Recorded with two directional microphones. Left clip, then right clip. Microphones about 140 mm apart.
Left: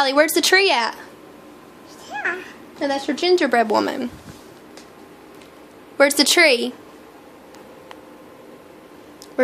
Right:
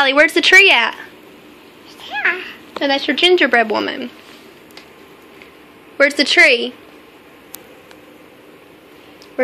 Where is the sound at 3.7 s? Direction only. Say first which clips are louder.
Even; 15° left (ahead or behind).